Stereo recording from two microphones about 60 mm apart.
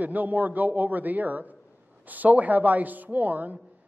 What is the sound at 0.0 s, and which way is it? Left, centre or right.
A man's voice, right.